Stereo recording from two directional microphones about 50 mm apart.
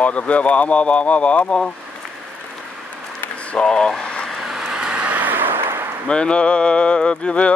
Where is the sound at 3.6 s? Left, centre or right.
Centre.